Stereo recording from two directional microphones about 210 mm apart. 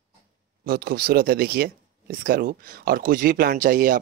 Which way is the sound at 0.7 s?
45° right (ahead or behind).